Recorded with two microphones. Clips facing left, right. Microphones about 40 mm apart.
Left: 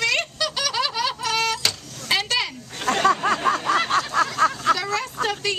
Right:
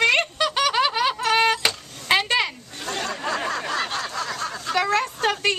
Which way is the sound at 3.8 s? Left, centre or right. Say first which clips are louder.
Left 6 dB; left.